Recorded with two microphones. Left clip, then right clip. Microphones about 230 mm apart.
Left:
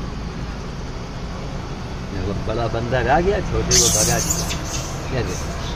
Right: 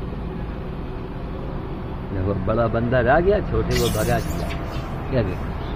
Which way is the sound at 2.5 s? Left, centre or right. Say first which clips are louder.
Right 1 dB; centre.